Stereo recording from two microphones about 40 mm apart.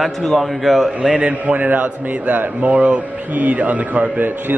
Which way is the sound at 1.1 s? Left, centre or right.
Right.